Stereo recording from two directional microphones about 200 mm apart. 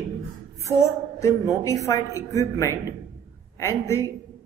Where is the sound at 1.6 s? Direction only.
15° left (ahead or behind).